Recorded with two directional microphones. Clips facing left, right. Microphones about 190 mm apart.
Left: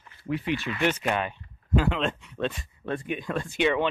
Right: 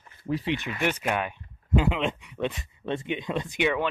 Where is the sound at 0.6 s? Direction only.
15° right (ahead or behind).